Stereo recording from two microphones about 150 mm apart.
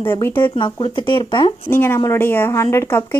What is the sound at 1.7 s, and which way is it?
A woman's voice, 15° left (ahead or behind).